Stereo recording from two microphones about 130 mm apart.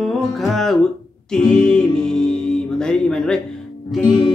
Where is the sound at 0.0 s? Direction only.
Centre (ahead or behind).